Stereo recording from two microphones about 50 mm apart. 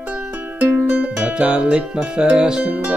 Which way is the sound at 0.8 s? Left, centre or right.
Right.